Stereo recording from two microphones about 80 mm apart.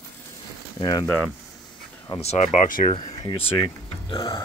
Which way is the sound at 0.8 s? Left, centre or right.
Left.